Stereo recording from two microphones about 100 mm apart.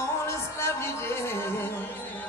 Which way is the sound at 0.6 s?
25° left (ahead or behind).